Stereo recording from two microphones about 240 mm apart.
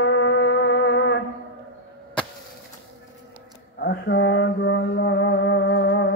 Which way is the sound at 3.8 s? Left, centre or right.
Left.